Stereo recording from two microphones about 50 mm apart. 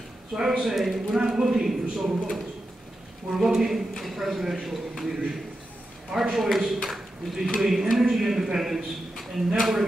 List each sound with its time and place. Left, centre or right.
0.3 s a man's voice: centre
1.1 s a man's voice: centre
6.1 s a man's voice: centre